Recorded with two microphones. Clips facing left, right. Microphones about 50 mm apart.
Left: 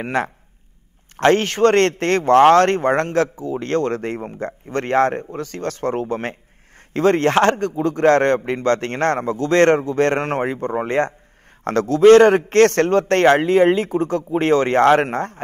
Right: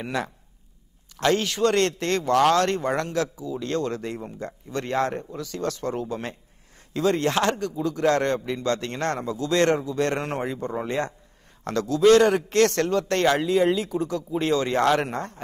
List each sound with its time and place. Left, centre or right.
0.0 s a man's voice: left